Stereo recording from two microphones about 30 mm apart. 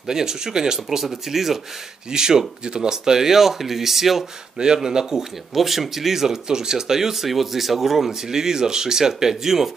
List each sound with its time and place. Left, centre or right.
0.0 s speech: centre
1.3 s speech: centre
2.0 s speech: right